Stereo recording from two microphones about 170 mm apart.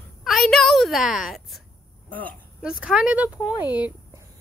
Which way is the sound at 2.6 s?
5° right (ahead or behind).